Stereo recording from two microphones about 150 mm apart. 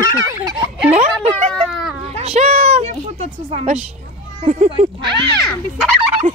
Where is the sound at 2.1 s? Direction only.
45° right (ahead or behind).